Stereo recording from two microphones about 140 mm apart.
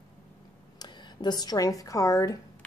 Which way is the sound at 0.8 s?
30° left (ahead or behind).